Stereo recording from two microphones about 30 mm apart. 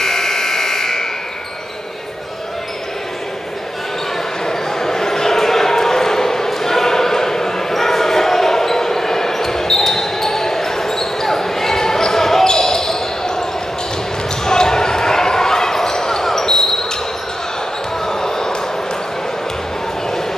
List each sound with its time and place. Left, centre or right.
0.0 s buzzer: centre
4.5 s basketball bounce: centre
18.0 s basketball bounce: centre